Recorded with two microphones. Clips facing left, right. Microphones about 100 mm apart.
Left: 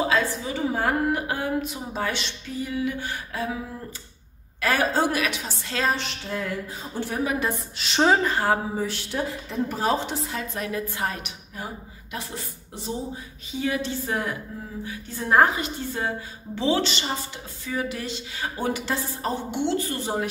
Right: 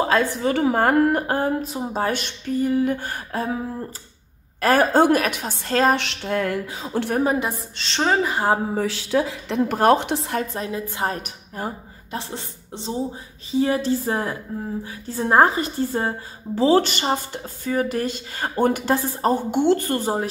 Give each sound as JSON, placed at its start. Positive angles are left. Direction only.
{"t": 0.0, "sound": "a woman's voice", "side_deg": -50}
{"t": 4.6, "sound": "a woman's voice", "side_deg": -45}
{"t": 5.9, "sound": "a woman's voice", "side_deg": -65}
{"t": 7.7, "sound": "a woman's voice", "side_deg": 10}
{"t": 8.2, "sound": "speech", "side_deg": -15}
{"t": 8.7, "sound": "a woman's voice", "side_deg": -85}
{"t": 10.4, "sound": "a woman's voice", "side_deg": -30}
{"t": 11.1, "sound": "speech", "side_deg": -45}
{"t": 12.2, "sound": "a woman's voice", "side_deg": -30}